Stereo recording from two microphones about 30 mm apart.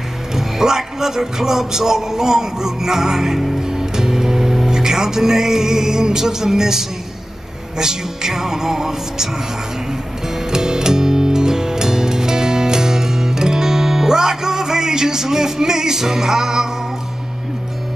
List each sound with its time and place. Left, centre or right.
0.3 s a man's voice: centre
3.6 s music: centre
4.6 s a man's voice: centre
10.2 s music: centre